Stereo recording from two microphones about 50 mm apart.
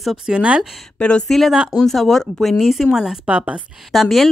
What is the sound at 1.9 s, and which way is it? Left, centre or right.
Speech, centre.